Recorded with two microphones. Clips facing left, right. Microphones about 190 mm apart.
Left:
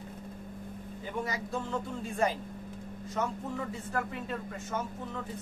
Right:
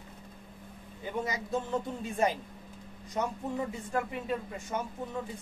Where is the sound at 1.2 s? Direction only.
20° right (ahead or behind).